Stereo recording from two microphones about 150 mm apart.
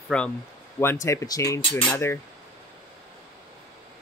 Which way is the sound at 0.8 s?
15° left (ahead or behind).